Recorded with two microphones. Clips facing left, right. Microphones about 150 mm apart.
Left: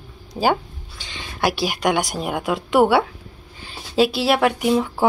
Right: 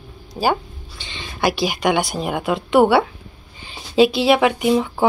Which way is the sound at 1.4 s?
10° left (ahead or behind).